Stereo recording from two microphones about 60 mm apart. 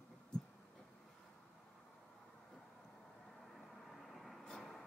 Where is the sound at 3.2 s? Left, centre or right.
Centre.